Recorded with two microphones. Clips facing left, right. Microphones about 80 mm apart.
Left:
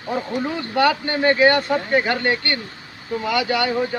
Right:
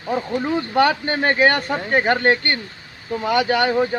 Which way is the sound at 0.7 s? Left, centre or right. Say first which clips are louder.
Even; right.